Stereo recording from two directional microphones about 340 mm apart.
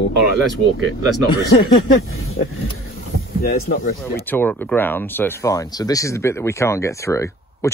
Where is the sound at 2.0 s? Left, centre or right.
Left.